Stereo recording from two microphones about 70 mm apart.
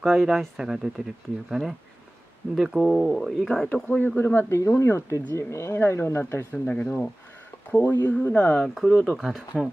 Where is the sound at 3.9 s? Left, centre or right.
Left.